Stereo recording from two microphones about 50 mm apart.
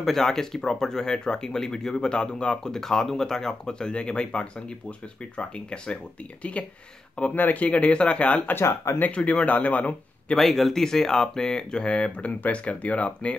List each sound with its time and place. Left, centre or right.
0.0 s speech: centre; by 6.7 s left
7.3 s speech: left
7.6 s speech: left
8.5 s speech: left
9.1 s speech: left
10.3 s speech: centre; by 13.4 s left